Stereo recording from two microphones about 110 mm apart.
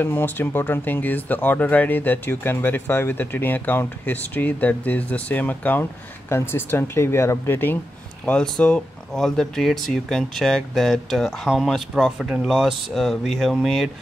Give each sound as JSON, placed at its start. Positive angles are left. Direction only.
{"t": 0.0, "sound": "speech", "side_deg": 20}